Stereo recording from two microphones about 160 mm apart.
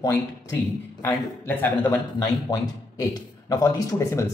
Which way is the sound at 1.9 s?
25° left (ahead or behind).